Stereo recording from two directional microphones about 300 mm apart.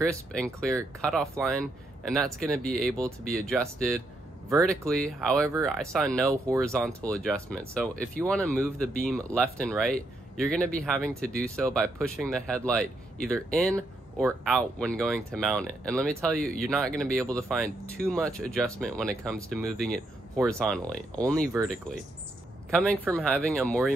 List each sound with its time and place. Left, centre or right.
0.3 s speech: centre
4.6 s speech: centre
22.7 s a man's voice: centre